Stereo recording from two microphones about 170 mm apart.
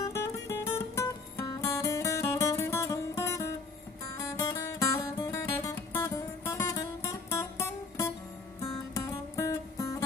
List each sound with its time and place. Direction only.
0.0 s music: 20° left (ahead or behind)
8.5 s music: 15° left (ahead or behind)